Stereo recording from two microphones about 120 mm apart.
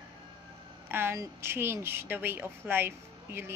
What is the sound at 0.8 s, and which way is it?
A woman's voice, 20° right (ahead or behind).